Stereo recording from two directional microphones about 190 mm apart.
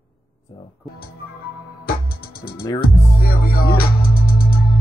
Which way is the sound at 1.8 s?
50° left (ahead or behind).